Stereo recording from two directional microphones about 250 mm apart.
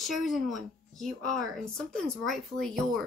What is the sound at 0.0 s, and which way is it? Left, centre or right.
Speech, centre.